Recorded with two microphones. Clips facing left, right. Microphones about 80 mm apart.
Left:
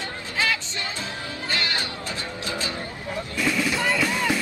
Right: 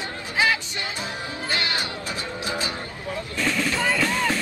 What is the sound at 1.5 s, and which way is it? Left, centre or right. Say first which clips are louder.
Music: right 1 dB; right.